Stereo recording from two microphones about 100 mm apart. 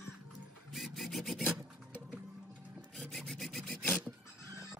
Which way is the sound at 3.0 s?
5° left (ahead or behind).